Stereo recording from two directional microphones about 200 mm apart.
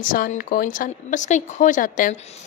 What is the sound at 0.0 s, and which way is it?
Speech, 45° left (ahead or behind).